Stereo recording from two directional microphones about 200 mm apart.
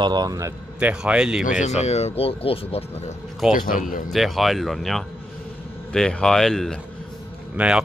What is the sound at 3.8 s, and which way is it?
Speech, 45° left (ahead or behind).